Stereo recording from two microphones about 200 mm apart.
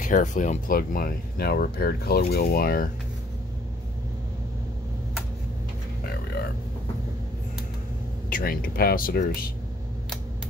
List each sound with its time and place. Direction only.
0.0 s speech: 40° left (ahead or behind)
6.0 s music: 50° left (ahead or behind)
8.3 s speech: 45° left (ahead or behind)